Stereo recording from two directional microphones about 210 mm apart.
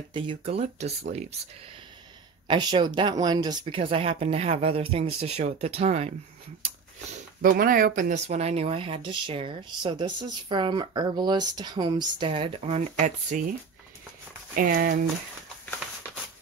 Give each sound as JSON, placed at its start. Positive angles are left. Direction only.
{"t": 0.1, "sound": "speech", "side_deg": -25}
{"t": 2.4, "sound": "speech", "side_deg": -20}
{"t": 7.2, "sound": "speech", "side_deg": -40}
{"t": 14.5, "sound": "speech", "side_deg": -45}